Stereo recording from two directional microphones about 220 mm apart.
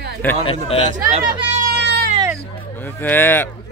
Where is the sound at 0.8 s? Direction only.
35° right (ahead or behind).